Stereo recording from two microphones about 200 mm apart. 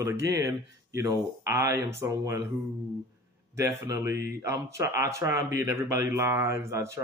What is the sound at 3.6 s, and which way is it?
Speech, 15° right (ahead or behind).